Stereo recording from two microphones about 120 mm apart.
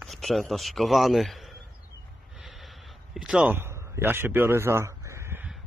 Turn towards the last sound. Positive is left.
turn(degrees=-20)  # may be behind; listen again after turning